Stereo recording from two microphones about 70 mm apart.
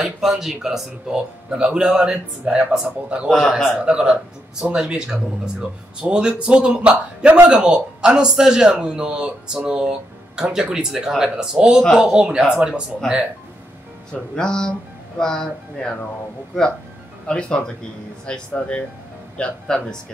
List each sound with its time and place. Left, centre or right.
0.0 s speech: centre
3.3 s a man's voice: centre
3.7 s speech: centre
14.1 s speech: centre
17.3 s speech: centre